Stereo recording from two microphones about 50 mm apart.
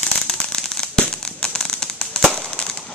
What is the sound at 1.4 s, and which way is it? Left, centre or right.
Fireworks, centre.